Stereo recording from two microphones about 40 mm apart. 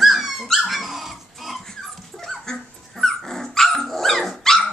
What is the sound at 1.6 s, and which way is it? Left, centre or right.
Dog, centre.